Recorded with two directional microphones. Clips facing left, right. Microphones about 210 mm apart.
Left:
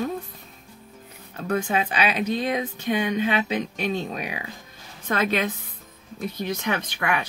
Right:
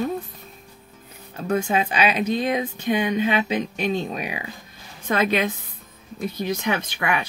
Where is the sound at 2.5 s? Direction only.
15° right (ahead or behind).